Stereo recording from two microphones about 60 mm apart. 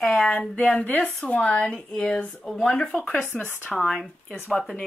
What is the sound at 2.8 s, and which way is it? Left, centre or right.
Speech, left.